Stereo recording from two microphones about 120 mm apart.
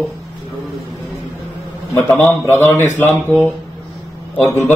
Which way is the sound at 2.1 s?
20° left (ahead or behind).